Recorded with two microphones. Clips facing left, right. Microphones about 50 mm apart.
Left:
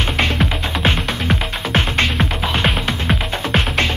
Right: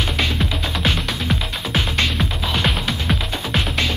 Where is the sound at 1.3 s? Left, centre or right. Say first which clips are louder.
Left 4 dB; left.